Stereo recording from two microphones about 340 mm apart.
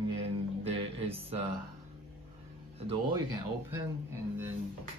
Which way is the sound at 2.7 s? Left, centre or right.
Centre.